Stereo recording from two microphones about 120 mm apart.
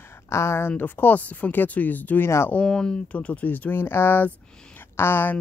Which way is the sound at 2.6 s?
5° left (ahead or behind).